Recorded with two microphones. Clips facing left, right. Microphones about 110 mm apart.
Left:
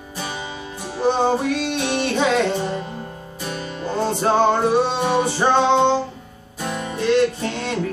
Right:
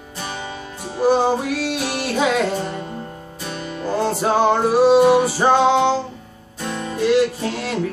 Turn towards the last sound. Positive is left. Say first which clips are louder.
# right 1 dB
turn(degrees=-5)  # may be behind; listen again after turning